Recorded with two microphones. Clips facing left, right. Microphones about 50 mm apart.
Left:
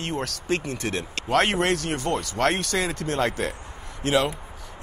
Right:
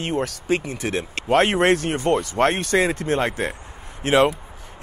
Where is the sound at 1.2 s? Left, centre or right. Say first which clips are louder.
Right 5 dB; right.